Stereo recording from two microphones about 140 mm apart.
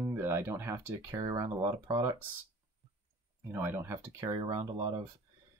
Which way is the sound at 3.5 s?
15° right (ahead or behind).